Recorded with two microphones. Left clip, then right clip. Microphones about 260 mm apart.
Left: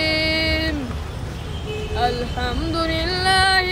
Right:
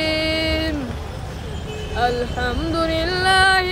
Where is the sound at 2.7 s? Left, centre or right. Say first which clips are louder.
Right 2 dB; centre.